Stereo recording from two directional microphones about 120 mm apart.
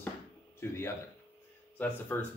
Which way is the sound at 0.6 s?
20° left (ahead or behind).